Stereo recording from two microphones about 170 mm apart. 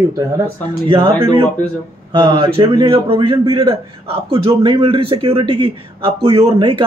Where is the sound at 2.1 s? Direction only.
30° right (ahead or behind).